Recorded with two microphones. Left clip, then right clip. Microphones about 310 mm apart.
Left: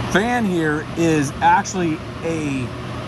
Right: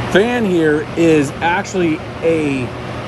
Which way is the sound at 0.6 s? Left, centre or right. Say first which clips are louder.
Right 7 dB; centre.